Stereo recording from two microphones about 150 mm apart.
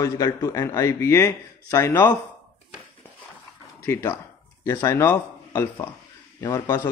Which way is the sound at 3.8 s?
15° left (ahead or behind).